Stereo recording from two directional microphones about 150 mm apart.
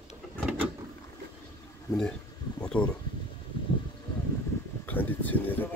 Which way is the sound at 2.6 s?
5° left (ahead or behind).